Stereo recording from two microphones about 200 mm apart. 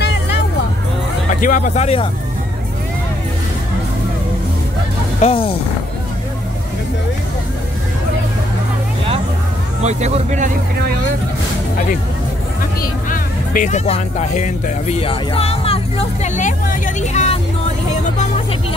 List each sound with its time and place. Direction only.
1.3 s speech: 40° left (ahead or behind)
5.2 s speech: 30° left (ahead or behind)
9.8 s speech: 35° right (ahead or behind)
13.1 s speech: 40° left (ahead or behind)